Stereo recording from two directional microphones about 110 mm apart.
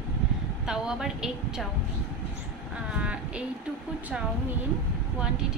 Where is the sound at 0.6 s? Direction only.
5° right (ahead or behind).